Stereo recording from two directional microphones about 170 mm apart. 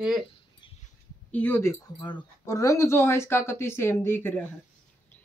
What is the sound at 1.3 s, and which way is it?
Speech, 10° left (ahead or behind).